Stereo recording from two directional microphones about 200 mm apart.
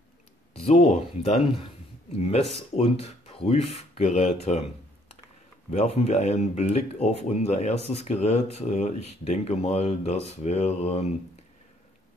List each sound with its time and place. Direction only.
0.6 s speech: 30° left (ahead or behind)
5.7 s speech: 35° left (ahead or behind)